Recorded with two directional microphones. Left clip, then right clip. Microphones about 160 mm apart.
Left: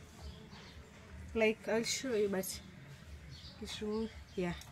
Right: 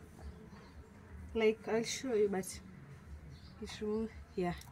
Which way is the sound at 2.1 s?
35° right (ahead or behind).